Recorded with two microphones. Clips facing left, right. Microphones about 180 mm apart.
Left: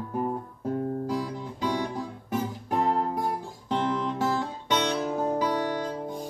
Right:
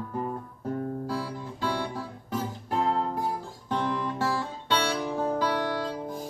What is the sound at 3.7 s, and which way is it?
Guitar, 20° left (ahead or behind).